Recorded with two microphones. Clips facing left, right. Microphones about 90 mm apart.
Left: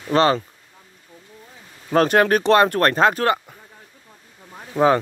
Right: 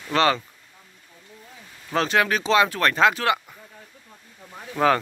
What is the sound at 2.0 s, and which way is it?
Speech, 50° left (ahead or behind).